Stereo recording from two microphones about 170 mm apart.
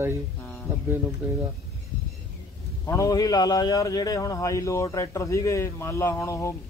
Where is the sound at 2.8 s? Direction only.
20° left (ahead or behind).